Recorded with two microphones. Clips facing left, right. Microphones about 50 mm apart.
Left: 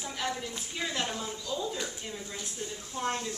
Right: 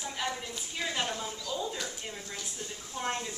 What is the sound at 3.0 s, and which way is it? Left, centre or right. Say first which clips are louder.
Speech: left 2 dB; centre.